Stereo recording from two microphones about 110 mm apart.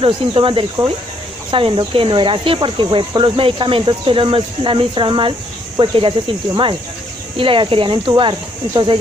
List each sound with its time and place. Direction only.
0.0 s speech: 55° right (ahead or behind)